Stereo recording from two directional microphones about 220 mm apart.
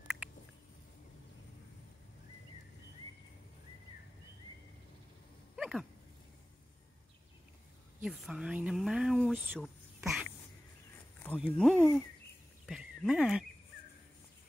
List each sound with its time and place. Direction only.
5.6 s a sound: centre (ahead or behind)
8.0 s speech: 5° right (ahead or behind)
11.2 s speech: centre (ahead or behind)